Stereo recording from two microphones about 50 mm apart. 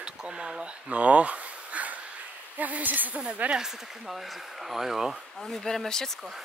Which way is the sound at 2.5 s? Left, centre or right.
Right.